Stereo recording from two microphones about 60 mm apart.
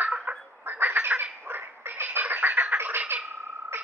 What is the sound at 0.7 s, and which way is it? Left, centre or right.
Duck, right.